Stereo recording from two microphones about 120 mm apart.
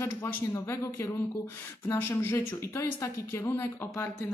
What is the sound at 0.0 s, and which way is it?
Speech, 20° left (ahead or behind).